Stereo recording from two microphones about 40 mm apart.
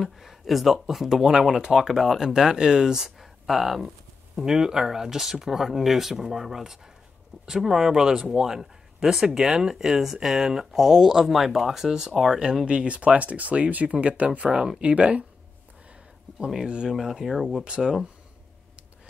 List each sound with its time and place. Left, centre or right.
0.0 s speech: centre
12.6 s speech: right
16.6 s speech: right
16.9 s speech: centre
17.6 s speech: right